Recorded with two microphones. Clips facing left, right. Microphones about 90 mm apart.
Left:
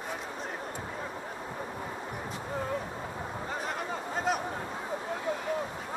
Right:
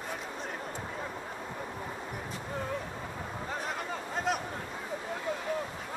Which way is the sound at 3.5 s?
Centre (ahead or behind).